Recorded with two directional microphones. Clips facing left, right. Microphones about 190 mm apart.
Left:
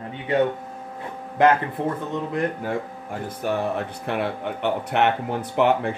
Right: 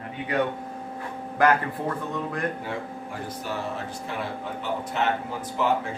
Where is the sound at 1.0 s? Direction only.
25° left (ahead or behind).